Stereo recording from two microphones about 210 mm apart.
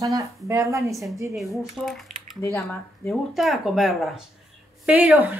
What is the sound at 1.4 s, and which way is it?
Speech, centre (ahead or behind).